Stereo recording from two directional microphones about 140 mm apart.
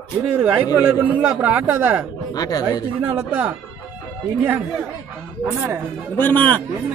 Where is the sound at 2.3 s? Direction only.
25° left (ahead or behind).